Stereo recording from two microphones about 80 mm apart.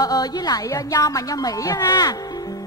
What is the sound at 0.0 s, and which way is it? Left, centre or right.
Speech, left.